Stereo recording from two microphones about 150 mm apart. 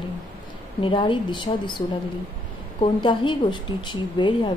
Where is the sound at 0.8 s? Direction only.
35° left (ahead or behind).